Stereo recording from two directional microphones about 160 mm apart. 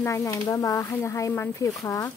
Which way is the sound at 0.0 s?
20° left (ahead or behind).